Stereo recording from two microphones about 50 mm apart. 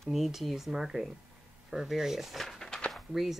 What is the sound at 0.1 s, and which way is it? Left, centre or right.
A woman's voice, centre.